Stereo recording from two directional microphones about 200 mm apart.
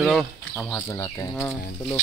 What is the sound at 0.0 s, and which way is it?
Speech, centre (ahead or behind).